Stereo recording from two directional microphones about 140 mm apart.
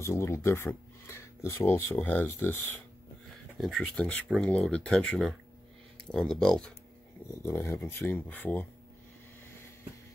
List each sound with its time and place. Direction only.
0.0 s speech: 20° left (ahead or behind)
3.5 s speech: centre (ahead or behind)
7.4 s speech: 20° left (ahead or behind)